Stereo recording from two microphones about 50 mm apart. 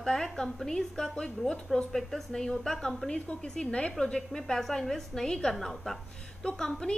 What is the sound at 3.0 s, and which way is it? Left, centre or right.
A woman's voice, centre.